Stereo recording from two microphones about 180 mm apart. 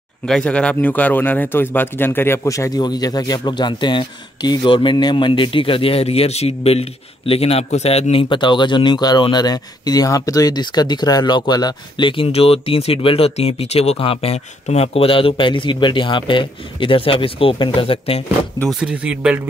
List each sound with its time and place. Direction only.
0.3 s a man's voice: 5° left (ahead or behind); by 18.2 s 30° left (ahead or behind)
18.6 s speech: centre (ahead or behind)